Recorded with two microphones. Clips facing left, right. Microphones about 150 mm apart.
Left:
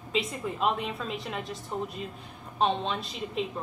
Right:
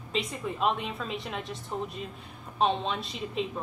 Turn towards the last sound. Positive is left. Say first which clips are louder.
# even
turn(degrees=0)  # may be behind; listen again after turning